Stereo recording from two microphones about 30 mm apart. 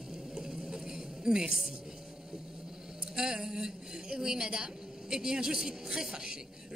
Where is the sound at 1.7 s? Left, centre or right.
Centre.